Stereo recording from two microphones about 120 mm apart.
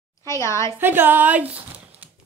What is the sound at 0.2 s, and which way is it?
Speech, 25° left (ahead or behind).